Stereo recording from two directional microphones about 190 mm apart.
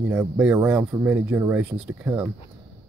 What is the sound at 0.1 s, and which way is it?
Speech, 10° right (ahead or behind).